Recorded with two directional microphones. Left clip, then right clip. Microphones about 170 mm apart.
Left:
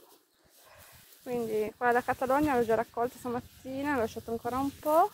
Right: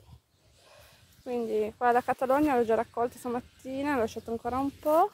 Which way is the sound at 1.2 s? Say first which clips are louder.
Right 2 dB; 40° right (ahead or behind).